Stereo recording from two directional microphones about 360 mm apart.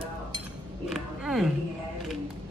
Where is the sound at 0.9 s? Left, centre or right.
Centre.